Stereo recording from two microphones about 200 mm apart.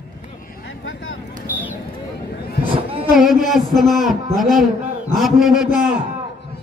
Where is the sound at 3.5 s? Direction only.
Centre (ahead or behind).